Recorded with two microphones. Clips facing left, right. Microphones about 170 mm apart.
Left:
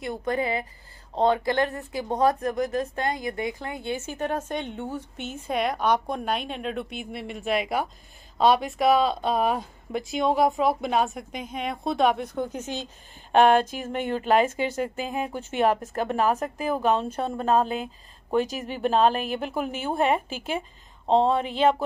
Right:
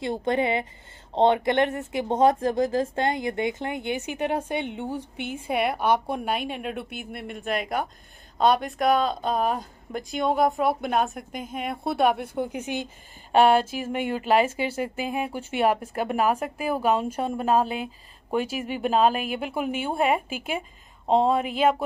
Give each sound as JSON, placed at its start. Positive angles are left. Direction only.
{"t": 0.0, "sound": "speech", "side_deg": -25}